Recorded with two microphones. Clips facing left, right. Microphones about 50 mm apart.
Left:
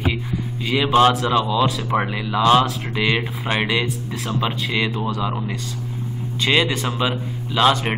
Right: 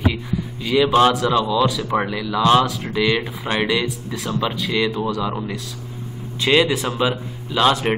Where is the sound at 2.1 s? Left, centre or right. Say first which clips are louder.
Right 1 dB; left.